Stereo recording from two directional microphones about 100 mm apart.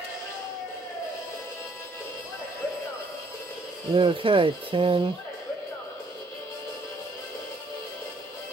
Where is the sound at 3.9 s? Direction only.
60° right (ahead or behind).